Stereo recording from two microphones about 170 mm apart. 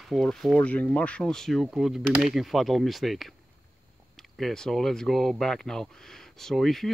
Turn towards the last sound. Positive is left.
turn(degrees=0)  # may be behind; listen again after turning